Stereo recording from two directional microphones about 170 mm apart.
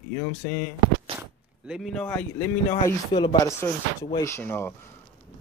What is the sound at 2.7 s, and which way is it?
Speech, 30° left (ahead or behind).